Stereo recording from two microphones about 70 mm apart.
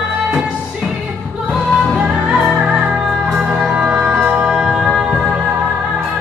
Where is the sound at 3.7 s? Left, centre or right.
Right.